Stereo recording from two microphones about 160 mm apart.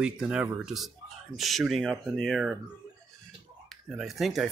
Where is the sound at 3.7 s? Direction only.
Centre (ahead or behind).